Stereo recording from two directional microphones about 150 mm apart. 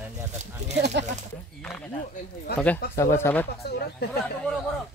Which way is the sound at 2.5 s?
90° left.